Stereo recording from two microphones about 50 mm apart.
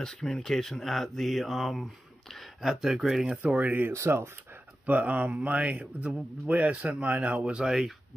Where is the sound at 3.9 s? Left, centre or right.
Right.